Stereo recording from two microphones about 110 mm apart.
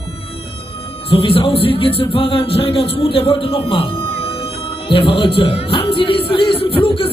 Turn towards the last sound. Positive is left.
turn(degrees=55)  # may be behind; listen again after turning